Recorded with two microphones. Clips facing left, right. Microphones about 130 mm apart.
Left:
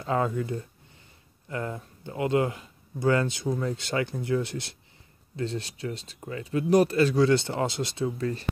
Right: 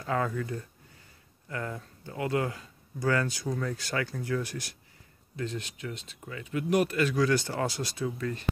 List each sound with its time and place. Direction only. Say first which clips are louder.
0.0 s speech: left 3 dB; 25° left (ahead or behind)